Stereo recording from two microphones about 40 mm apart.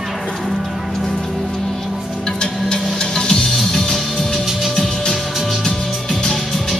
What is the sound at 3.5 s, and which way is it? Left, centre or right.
Music, centre.